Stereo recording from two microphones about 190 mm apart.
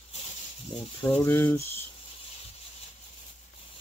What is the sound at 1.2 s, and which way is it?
Speech, 10° left (ahead or behind).